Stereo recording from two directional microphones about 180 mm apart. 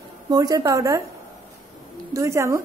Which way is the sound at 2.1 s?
15° right (ahead or behind).